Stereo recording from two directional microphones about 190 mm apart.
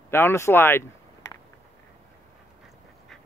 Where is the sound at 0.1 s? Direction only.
15° left (ahead or behind).